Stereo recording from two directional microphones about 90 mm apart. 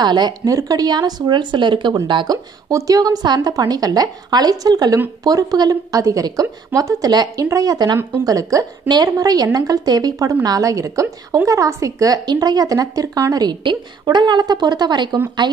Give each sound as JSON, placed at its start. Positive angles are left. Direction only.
{"t": 0.0, "sound": "a woman's voice", "side_deg": -55}
{"t": 2.7, "sound": "a woman's voice", "side_deg": -40}